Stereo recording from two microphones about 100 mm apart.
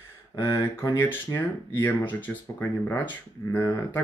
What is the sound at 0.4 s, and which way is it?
Speech, 35° left (ahead or behind).